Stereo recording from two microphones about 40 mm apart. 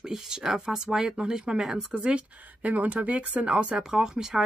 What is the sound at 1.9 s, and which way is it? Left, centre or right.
Speech, right.